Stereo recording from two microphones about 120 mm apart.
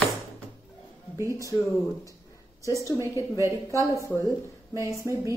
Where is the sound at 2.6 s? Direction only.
25° right (ahead or behind).